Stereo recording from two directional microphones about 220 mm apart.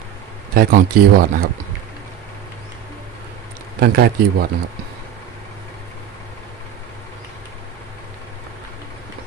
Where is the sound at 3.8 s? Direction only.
45° right (ahead or behind).